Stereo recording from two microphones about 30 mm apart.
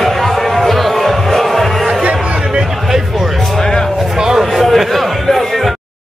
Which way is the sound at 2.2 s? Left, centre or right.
Right.